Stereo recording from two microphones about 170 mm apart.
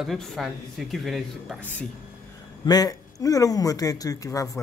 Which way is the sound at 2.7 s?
20° left (ahead or behind).